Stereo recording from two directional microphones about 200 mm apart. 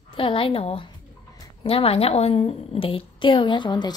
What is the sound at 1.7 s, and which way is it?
A woman's voice, 30° left (ahead or behind).